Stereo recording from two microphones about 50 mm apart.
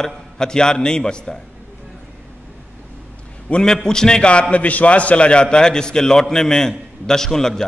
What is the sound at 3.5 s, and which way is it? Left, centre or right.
Speech, centre.